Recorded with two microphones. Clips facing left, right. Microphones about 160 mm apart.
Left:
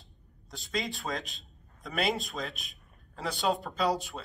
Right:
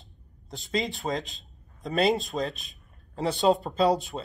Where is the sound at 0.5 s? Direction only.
20° right (ahead or behind).